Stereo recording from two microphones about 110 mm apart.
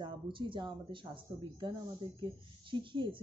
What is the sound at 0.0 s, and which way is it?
Speech, 45° right (ahead or behind).